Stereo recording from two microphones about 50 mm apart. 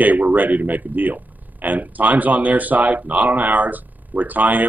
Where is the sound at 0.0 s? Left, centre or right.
Right.